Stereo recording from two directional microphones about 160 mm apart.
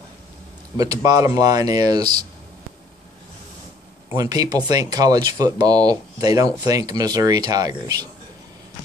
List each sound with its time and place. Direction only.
0.7 s speech: 25° right (ahead or behind)
4.1 s speech: 25° right (ahead or behind)